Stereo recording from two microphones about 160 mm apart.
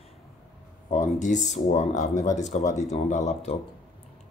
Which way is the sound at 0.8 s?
50° left (ahead or behind).